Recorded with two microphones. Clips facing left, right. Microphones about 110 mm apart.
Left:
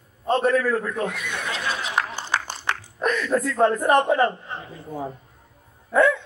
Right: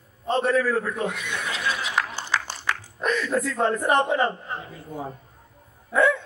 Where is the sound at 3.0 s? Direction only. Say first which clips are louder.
Left 2 dB; 45° left (ahead or behind).